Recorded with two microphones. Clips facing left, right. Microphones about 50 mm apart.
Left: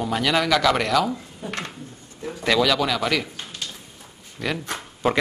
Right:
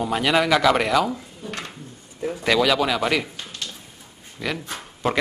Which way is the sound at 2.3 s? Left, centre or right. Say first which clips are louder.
Right 1 dB; centre.